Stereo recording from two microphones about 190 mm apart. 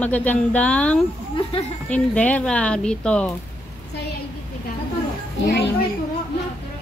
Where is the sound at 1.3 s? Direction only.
30° left (ahead or behind).